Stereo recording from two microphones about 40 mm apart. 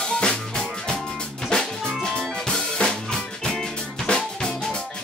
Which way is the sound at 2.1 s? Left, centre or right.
Centre.